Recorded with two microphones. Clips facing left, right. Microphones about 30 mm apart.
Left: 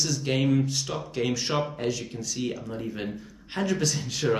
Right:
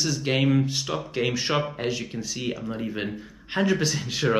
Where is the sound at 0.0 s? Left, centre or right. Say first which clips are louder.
Right 2 dB; right.